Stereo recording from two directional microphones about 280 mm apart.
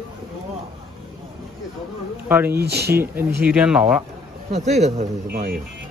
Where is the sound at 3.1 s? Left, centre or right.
Centre.